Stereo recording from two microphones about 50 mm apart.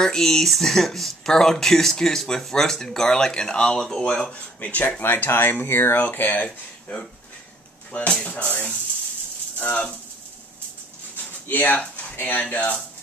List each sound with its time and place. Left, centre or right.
0.0 s speech: centre
4.3 s speech: left
5.0 s speech: left
5.9 s speech: left
6.4 s speech: left
8.1 s speech: left
9.6 s speech: left
11.4 s speech: left